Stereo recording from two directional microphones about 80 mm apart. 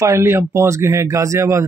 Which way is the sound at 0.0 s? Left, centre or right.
Right.